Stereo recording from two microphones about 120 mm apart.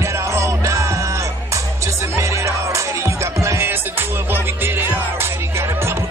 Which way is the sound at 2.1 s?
25° right (ahead or behind).